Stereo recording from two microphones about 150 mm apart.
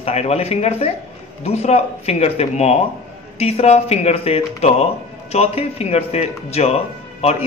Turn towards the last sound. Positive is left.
turn(degrees=45)  # may be behind; listen again after turning